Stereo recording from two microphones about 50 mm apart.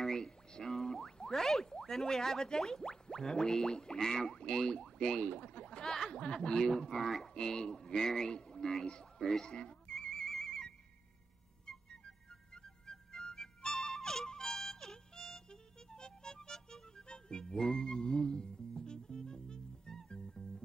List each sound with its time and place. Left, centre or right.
0.0 s a sound: centre
0.5 s speech: centre
9.5 s music: centre